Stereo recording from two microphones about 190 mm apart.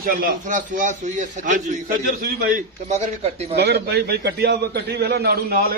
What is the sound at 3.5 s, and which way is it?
A man's voice, 60° right (ahead or behind).